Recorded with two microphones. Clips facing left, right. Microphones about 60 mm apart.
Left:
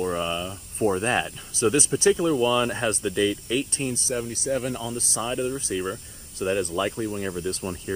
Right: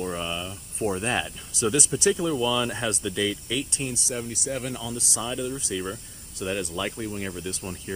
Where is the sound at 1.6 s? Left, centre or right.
Left.